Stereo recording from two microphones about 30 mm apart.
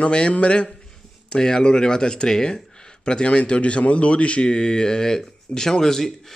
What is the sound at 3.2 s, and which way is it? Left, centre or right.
A man's voice, left.